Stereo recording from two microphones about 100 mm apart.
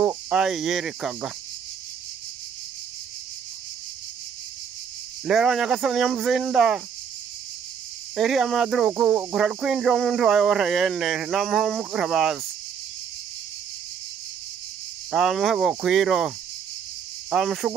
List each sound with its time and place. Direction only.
0.3 s speech: 5° right (ahead or behind)
5.2 s speech: 5° right (ahead or behind)
8.2 s speech: 5° right (ahead or behind)
15.0 s speech: 5° right (ahead or behind)